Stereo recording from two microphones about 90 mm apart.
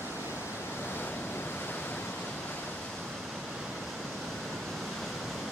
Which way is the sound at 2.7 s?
Centre (ahead or behind).